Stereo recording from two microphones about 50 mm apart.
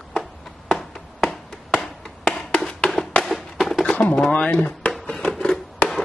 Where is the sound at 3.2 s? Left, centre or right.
Centre.